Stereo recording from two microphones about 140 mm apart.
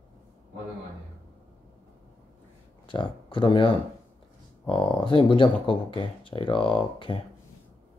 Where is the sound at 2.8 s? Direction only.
35° left (ahead or behind).